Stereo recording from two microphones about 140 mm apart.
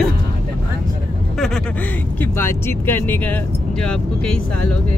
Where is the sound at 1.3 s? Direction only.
5° left (ahead or behind).